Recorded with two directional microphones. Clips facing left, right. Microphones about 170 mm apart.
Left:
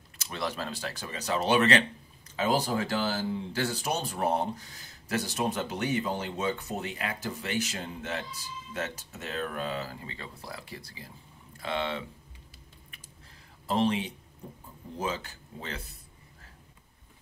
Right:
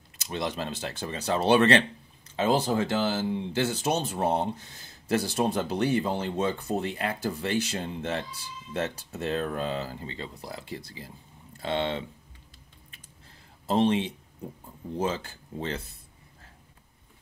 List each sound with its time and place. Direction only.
0.2 s speech: 20° right (ahead or behind)
13.7 s speech: 25° right (ahead or behind)